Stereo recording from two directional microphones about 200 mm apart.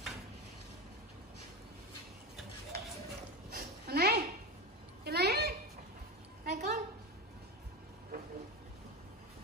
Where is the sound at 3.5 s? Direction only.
50° right (ahead or behind).